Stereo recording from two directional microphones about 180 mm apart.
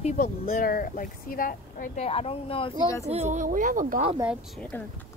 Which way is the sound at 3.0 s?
40° right (ahead or behind).